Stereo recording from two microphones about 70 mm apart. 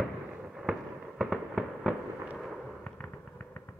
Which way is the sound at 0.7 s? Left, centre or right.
Centre.